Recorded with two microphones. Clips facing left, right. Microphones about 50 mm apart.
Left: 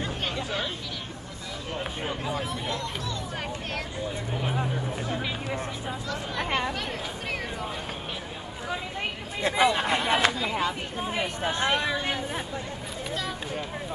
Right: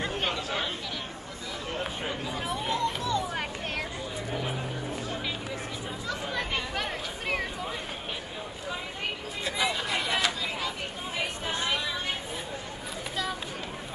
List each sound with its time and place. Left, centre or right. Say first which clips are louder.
0.0 s chatter: right 1 dB; centre
2.3 s speech: even; centre
2.8 s music: right 5 dB; centre
6.7 s chatter: left 1 dB; centre
9.5 s a sound: left 6 dB; left
10.4 s a sound: left 5 dB; centre; by 12.2 s left